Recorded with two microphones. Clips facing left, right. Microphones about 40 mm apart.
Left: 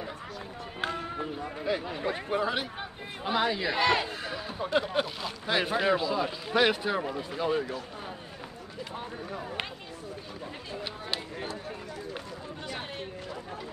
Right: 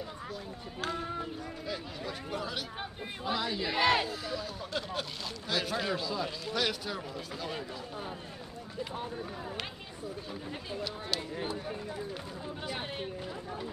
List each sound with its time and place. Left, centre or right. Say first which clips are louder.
1.4 s speech: left 7 dB; left
3.6 s speech: left 2 dB; centre
4.8 s speech: left 7 dB; left